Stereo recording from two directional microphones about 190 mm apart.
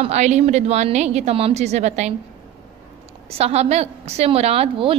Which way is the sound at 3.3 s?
30° right (ahead or behind).